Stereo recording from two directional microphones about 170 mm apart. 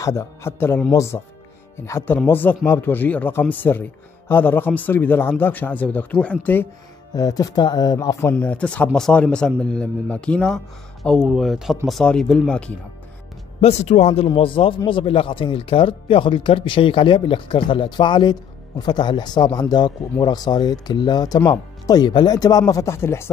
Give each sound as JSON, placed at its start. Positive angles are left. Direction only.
{"t": 0.0, "sound": "speech", "side_deg": 15}
{"t": 7.2, "sound": "speech", "side_deg": 20}
{"t": 13.6, "sound": "a man's voice", "side_deg": 40}